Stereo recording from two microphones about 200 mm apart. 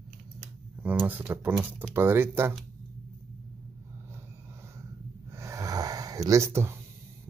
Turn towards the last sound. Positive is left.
turn(degrees=-15)  # may be behind; listen again after turning